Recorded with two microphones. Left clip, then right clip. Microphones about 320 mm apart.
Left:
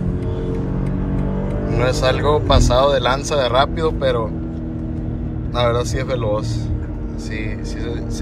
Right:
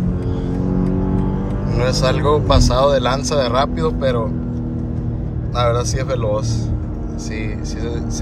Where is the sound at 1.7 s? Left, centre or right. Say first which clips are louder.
Left 1 dB; centre.